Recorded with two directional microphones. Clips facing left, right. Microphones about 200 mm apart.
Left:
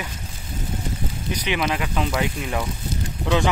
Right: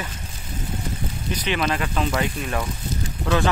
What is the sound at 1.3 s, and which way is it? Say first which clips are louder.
Speech: even; 15° left (ahead or behind).